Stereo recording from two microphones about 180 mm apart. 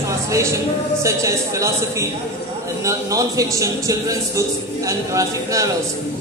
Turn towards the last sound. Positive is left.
turn(degrees=-20)  # may be behind; listen again after turning